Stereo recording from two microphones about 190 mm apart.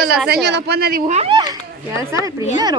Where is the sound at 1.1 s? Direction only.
25° right (ahead or behind).